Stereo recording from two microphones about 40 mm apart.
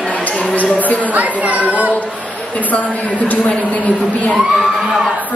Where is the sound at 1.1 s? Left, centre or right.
Right.